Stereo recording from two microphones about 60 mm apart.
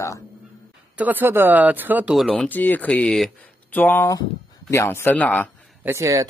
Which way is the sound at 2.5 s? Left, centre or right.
Left.